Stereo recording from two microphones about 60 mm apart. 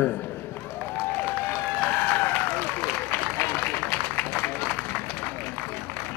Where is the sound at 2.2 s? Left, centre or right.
Left.